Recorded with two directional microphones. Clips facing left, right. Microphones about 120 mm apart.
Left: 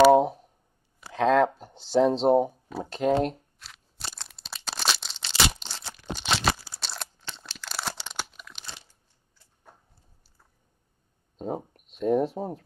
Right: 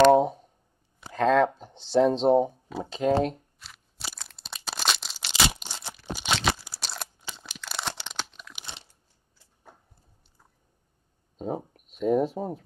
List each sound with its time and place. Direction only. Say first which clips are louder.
0.0 s a sound: left 1 dB; centre (ahead or behind)
1.0 s speech: even; centre (ahead or behind)
3.3 s tearing: even; centre (ahead or behind)
5.3 s crumpling: even; 10° right (ahead or behind)
8.5 s crunch: right 1 dB; 20° right (ahead or behind)
11.3 s a sound: even; centre (ahead or behind)